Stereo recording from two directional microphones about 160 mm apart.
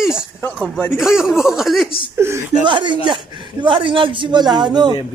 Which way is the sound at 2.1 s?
15° right (ahead or behind).